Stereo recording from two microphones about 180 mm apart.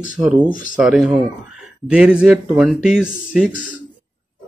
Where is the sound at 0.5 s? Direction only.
50° left (ahead or behind).